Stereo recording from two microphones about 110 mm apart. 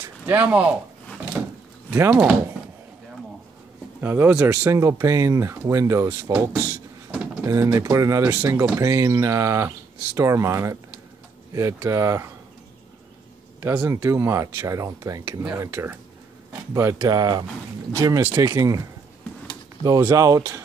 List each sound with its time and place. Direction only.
0.3 s speech: 15° right (ahead or behind)
1.9 s speech: 20° right (ahead or behind)
4.0 s speech: 20° right (ahead or behind)
7.4 s speech: 30° right (ahead or behind)
13.8 s speech: 25° right (ahead or behind)
17.1 s speech: 40° right (ahead or behind)
18.2 s speech: 20° right (ahead or behind)
18.5 s speech: 30° right (ahead or behind)